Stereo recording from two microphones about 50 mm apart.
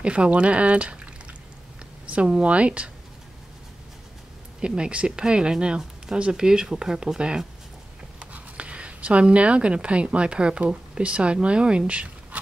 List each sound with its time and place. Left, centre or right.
0.0 s speech: right
2.0 s a sound: right
2.4 s speech: right
4.6 s speech: centre